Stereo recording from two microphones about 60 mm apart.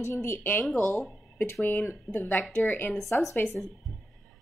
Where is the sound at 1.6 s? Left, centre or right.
Left.